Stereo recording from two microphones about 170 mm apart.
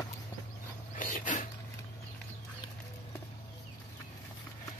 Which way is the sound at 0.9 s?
50° left (ahead or behind).